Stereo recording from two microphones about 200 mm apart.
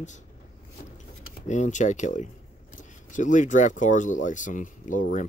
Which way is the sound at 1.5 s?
35° left (ahead or behind).